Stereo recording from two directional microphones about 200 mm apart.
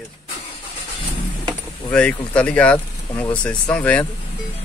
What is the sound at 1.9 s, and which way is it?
Speech, 5° left (ahead or behind).